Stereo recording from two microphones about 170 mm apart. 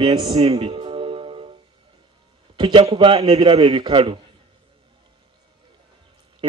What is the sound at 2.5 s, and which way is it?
A man's voice, 30° right (ahead or behind).